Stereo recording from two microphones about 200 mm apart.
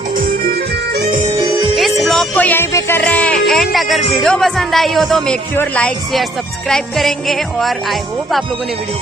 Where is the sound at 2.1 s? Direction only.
5° left (ahead or behind).